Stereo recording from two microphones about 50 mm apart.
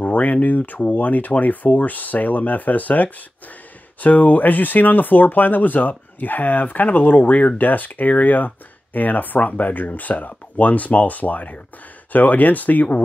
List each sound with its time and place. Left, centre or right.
0.0 s speech: left